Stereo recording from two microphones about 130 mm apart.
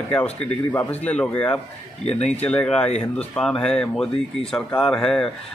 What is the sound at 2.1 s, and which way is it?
Speech, 60° left (ahead or behind).